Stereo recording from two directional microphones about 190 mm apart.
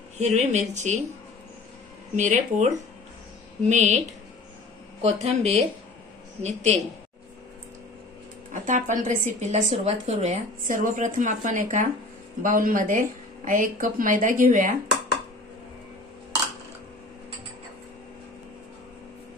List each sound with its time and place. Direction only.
0.2 s speech: 35° right (ahead or behind)
2.1 s speech: 40° right (ahead or behind)
5.0 s speech: 35° right (ahead or behind)
8.6 s a woman's voice: 40° right (ahead or behind)